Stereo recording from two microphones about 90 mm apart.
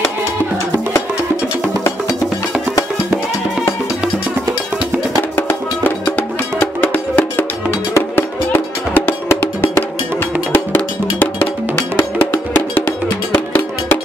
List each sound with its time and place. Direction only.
5.3 s music: 20° left (ahead or behind)